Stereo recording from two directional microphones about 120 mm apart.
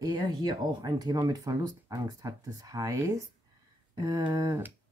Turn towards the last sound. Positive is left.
turn(degrees=-30)  # may be behind; listen again after turning